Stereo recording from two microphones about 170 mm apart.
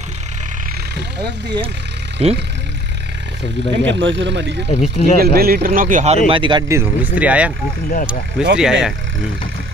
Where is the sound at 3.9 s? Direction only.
90° right.